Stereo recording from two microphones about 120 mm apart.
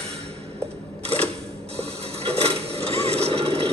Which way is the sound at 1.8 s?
55° right (ahead or behind).